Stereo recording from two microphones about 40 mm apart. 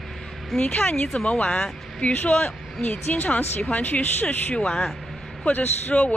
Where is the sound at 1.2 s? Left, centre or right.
Left.